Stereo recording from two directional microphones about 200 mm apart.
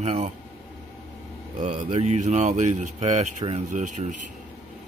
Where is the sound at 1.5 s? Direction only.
35° right (ahead or behind).